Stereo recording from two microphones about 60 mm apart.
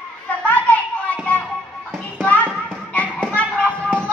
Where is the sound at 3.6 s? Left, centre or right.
Centre.